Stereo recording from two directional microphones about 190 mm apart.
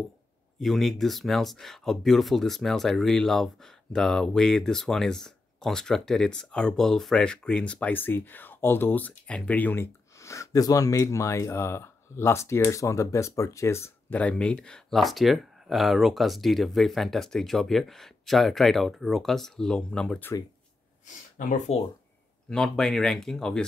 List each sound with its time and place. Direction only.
0.6 s speech: centre (ahead or behind)
21.4 s speech: 40° left (ahead or behind)
22.5 s speech: 5° left (ahead or behind)